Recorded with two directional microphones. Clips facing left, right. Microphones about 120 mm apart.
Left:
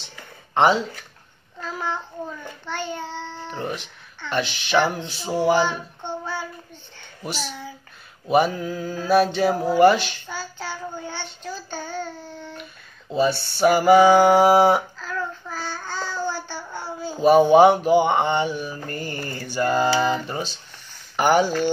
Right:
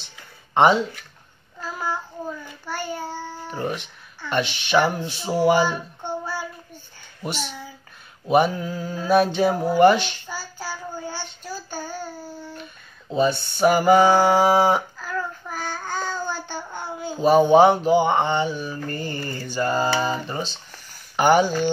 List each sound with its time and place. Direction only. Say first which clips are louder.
0.6 s mantra: right 1 dB; centre (ahead or behind)
1.6 s a child's voice: even; 5° right (ahead or behind)
5.2 s child singing: right 1 dB; 5° right (ahead or behind)
7.2 s mantra: even; centre (ahead or behind)
10.3 s child singing: left 2 dB; 10° right (ahead or behind)
13.1 s a sound: even; 5° left (ahead or behind)
15.0 s child singing: even; 15° right (ahead or behind)
17.2 s a sound: left 1 dB; 10° left (ahead or behind)
21.2 s mantra: right 1 dB; centre (ahead or behind)